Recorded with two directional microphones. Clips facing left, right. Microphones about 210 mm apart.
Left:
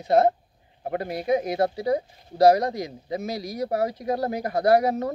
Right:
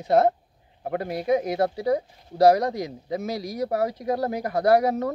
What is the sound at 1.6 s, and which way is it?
Speech, 25° left (ahead or behind).